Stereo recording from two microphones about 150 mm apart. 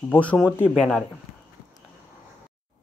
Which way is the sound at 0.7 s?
Centre (ahead or behind).